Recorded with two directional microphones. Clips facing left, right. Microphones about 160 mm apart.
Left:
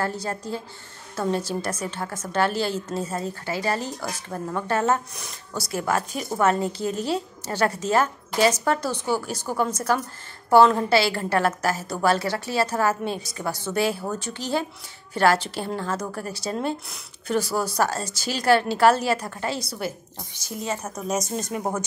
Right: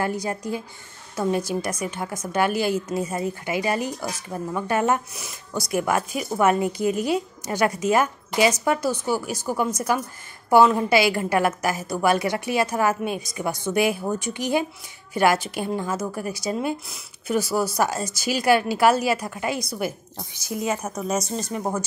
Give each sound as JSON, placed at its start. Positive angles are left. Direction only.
{"t": 0.0, "sound": "speech", "side_deg": -15}
{"t": 21.3, "sound": "speech", "side_deg": 5}